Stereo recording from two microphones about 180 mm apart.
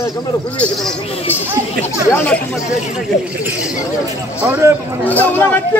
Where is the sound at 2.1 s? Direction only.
10° left (ahead or behind).